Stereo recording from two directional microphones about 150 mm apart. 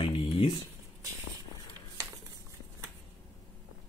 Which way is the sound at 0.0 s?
35° left (ahead or behind).